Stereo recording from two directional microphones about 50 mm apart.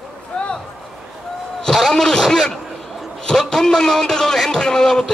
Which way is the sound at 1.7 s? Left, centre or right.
Centre.